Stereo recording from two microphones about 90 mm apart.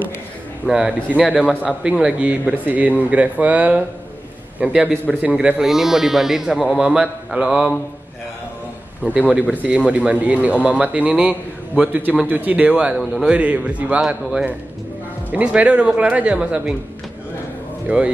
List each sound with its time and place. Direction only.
0.7 s a man's voice: 10° right (ahead or behind)
1.4 s a man's voice: 10° left (ahead or behind)
1.7 s a man's voice: 5° right (ahead or behind)
9.1 s a man's voice: 15° right (ahead or behind)
12.9 s speech: centre (ahead or behind)
13.3 s a man's voice: 15° right (ahead or behind)
15.3 s a man's voice: 15° right (ahead or behind)
17.8 s speech: 15° right (ahead or behind)